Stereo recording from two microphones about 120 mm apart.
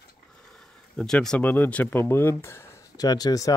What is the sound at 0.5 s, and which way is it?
Speech, 5° left (ahead or behind).